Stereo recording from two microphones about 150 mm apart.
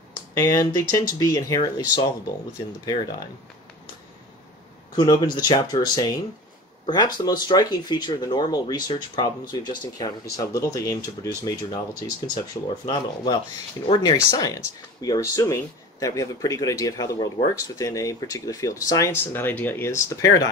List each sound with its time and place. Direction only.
0.3 s speech: 20° left (ahead or behind)
2.8 s speech: 25° left (ahead or behind)
4.9 s speech: 25° left (ahead or behind)